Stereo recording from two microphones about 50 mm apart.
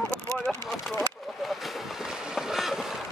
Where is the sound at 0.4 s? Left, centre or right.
Left.